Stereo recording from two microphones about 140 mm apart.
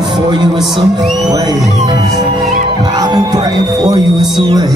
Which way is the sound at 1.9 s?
35° right (ahead or behind).